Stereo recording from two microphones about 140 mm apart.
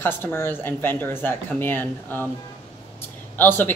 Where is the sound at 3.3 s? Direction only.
15° left (ahead or behind).